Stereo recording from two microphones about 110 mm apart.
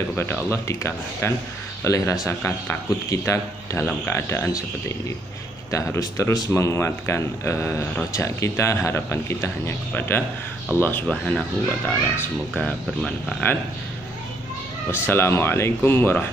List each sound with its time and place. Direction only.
0.1 s speech: 20° left (ahead or behind)
13.4 s speech: 15° left (ahead or behind)
14.9 s speech: 20° left (ahead or behind)